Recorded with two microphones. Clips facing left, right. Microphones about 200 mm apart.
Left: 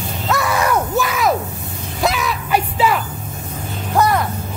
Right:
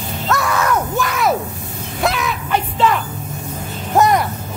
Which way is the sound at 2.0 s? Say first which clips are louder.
Even; centre (ahead or behind).